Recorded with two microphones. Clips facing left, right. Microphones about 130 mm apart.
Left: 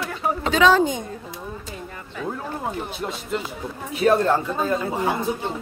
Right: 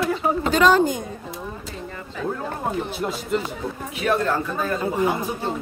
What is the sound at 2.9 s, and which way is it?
Speech, centre (ahead or behind).